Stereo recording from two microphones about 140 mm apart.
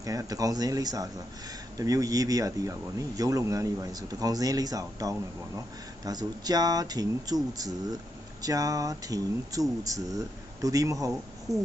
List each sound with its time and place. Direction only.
0.0 s speech: 25° right (ahead or behind)
8.4 s speech: 25° right (ahead or behind)